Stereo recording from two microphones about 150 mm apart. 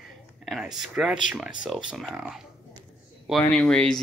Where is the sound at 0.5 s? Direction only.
5° right (ahead or behind).